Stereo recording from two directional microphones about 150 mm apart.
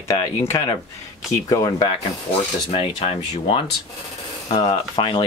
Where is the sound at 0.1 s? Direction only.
20° left (ahead or behind).